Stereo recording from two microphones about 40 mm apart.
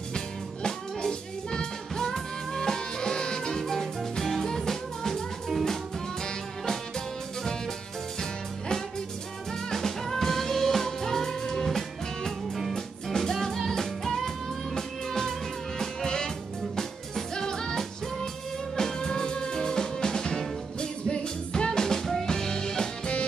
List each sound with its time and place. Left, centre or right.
0.1 s music: centre
8.2 s music: centre